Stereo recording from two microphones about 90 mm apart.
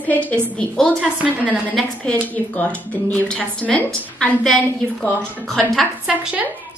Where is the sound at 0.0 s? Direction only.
15° left (ahead or behind).